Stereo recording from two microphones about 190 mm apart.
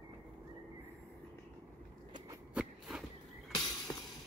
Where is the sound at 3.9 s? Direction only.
20° left (ahead or behind).